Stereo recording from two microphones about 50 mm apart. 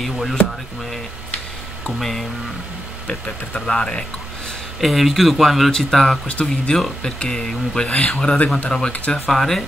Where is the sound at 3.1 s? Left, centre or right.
Centre.